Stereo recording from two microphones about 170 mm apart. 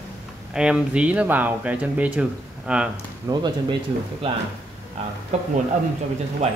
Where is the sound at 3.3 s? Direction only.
20° right (ahead or behind).